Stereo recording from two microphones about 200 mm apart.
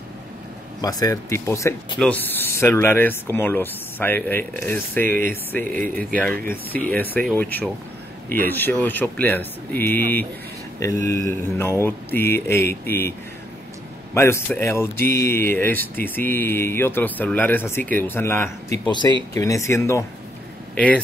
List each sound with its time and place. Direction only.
0.7 s speech: 20° left (ahead or behind)
14.1 s speech: 15° left (ahead or behind)
18.9 s speech: 20° left (ahead or behind); by 21.0 s 5° left (ahead or behind)